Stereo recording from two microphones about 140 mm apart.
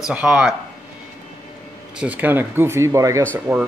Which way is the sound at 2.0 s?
10° right (ahead or behind).